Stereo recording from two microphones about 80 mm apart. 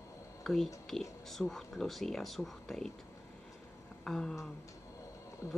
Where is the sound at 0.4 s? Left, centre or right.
Centre.